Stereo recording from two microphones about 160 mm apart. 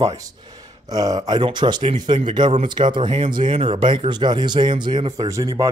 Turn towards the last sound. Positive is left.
turn(degrees=-20)  # may be behind; listen again after turning